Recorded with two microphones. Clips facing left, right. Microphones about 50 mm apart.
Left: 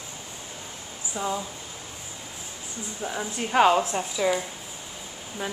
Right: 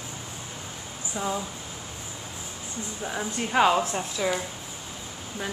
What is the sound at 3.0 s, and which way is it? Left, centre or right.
A woman's voice, centre.